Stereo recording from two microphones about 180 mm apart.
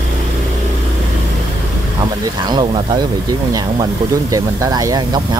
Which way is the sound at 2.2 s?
25° right (ahead or behind).